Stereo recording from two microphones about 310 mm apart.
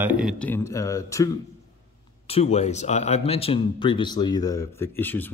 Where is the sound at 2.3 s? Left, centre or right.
Centre.